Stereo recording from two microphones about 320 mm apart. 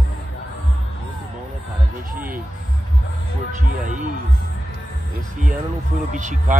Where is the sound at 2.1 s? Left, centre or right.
Right.